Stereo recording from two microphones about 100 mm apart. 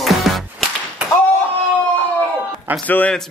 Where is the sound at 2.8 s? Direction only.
15° left (ahead or behind).